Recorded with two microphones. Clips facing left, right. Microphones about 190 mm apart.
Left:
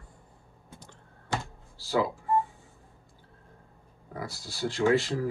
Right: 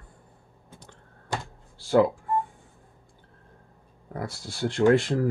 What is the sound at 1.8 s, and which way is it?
Speech, 55° right (ahead or behind).